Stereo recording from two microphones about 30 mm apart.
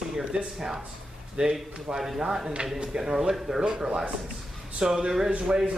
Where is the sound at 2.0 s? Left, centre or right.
Centre.